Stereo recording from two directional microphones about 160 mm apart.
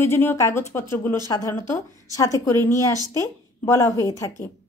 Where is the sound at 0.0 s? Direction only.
15° left (ahead or behind).